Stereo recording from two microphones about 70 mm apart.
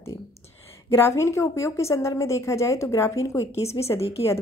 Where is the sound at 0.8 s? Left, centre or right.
Left.